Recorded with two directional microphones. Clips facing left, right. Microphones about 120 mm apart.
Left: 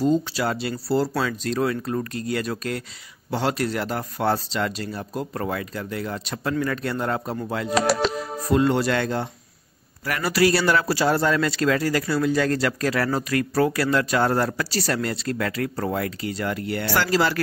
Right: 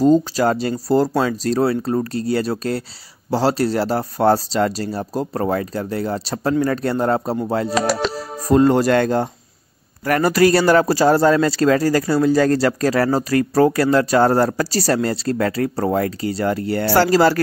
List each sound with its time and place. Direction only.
0.0 s speech: 40° right (ahead or behind)